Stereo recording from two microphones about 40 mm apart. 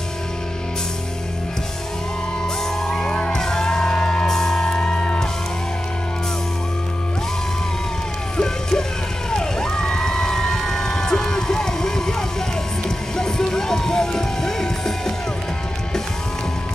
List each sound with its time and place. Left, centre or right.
2.8 s music: centre
8.4 s music: centre
9.3 s crowd: centre
12.8 s music: centre